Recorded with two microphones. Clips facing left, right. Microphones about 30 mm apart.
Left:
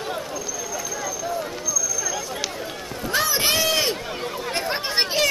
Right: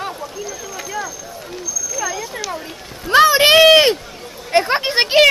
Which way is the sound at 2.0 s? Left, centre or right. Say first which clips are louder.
Right 4 dB; centre.